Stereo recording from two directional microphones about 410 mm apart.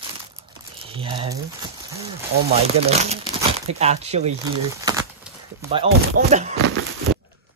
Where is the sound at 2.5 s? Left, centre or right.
Centre.